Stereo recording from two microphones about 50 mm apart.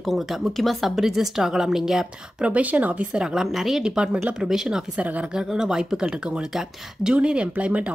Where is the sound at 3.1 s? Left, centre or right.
Centre.